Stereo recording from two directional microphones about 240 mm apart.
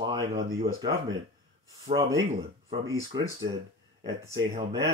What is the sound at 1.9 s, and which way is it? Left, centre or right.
Speech, centre.